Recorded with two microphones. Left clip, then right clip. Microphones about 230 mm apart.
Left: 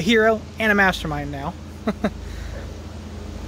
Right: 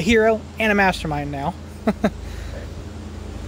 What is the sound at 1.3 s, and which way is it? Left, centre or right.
Speech, centre.